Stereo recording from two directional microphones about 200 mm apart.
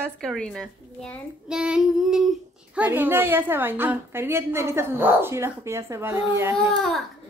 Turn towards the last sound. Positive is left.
turn(degrees=0)  # may be behind; listen again after turning